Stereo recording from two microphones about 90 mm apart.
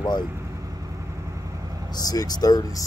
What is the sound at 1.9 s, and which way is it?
Speech, 45° left (ahead or behind).